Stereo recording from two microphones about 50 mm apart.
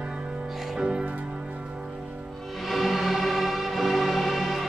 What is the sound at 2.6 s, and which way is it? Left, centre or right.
Music, centre.